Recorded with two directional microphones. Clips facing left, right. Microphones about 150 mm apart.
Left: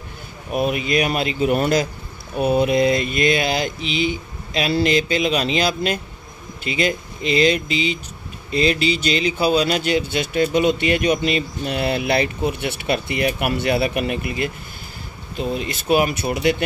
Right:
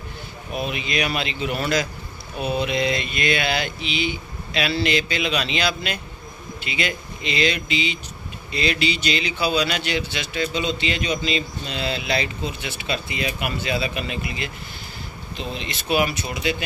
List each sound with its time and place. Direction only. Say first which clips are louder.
0.5 s a man's voice: left 7 dB; 50° left (ahead or behind)
15.3 s a man's voice: left 7 dB; 45° left (ahead or behind)